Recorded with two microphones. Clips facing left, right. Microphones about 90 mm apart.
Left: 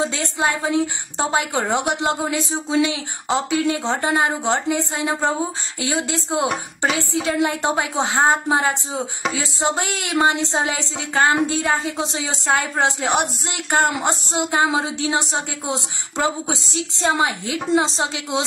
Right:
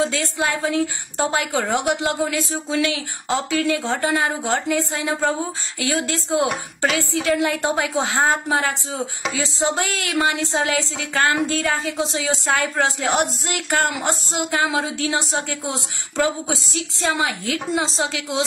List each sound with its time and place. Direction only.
0.0 s speech: 25° left (ahead or behind)